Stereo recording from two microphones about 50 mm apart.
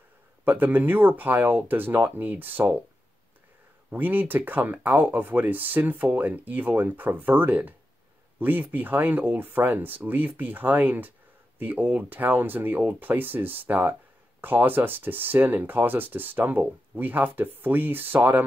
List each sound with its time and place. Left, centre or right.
0.5 s speech: right
3.9 s speech: right